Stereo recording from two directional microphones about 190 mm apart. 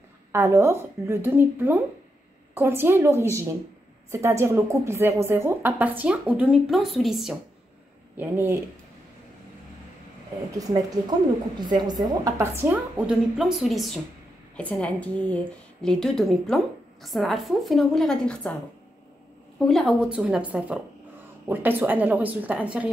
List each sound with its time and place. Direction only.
0.3 s a woman's voice: 15° right (ahead or behind)
8.2 s a woman's voice: 10° right (ahead or behind)
11.6 s a woman's voice: 20° right (ahead or behind); by 18.5 s 5° left (ahead or behind)
19.6 s a woman's voice: centre (ahead or behind)